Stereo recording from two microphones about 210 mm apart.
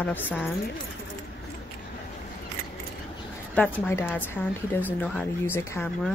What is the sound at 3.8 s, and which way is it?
Speech, 10° left (ahead or behind).